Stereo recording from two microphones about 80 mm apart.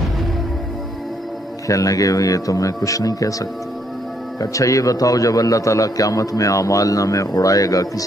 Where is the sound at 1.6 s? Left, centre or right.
Left.